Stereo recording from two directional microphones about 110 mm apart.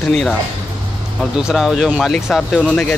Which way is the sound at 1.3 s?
5° right (ahead or behind).